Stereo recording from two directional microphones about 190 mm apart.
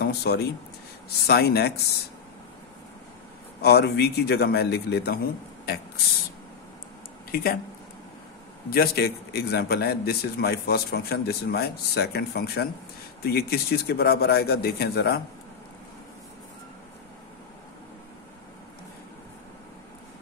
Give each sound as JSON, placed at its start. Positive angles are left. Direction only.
{"t": 0.0, "sound": "a man's voice", "side_deg": 55}
{"t": 3.6, "sound": "a man's voice", "side_deg": 60}
{"t": 7.2, "sound": "speech", "side_deg": 50}
{"t": 8.6, "sound": "a man's voice", "side_deg": 55}